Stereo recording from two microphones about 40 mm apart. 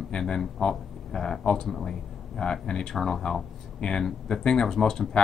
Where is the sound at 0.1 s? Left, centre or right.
Centre.